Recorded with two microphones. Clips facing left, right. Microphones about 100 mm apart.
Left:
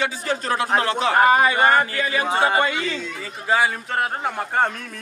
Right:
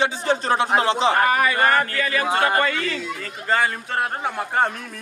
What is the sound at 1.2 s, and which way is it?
Speech, 25° left (ahead or behind).